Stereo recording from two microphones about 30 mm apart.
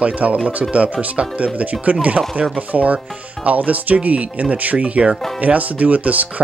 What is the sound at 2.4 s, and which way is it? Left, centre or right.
Speech, right.